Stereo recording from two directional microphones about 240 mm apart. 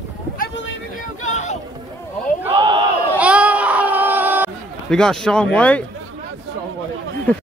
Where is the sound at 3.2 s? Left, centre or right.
Centre.